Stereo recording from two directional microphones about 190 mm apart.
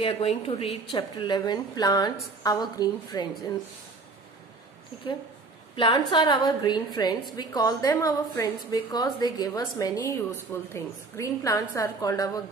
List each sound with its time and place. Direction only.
0.0 s a woman's voice: 30° left (ahead or behind)
5.8 s a woman's voice: 25° left (ahead or behind)